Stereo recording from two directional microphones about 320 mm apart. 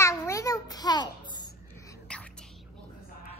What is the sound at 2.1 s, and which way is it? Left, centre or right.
Whispering, centre.